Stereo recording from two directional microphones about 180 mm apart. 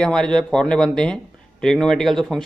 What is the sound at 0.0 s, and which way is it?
A man's voice, 5° left (ahead or behind).